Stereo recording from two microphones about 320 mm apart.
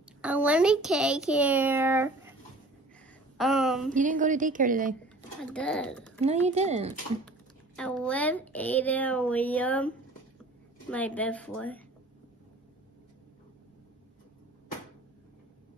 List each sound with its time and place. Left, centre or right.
0.2 s speech: centre
3.3 s speech: centre
3.9 s a woman's voice: right
5.4 s speech: centre
6.2 s a woman's voice: right
7.2 s speech: centre